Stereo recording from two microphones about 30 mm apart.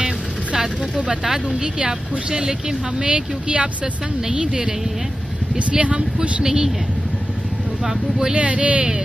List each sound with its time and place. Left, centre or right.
1.8 s a woman's voice: right
5.7 s a woman's voice: right
6.4 s speech: right
7.8 s speech: centre
8.4 s speech: right